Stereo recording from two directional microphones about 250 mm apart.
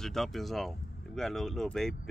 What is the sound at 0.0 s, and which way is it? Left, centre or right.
Speech, centre.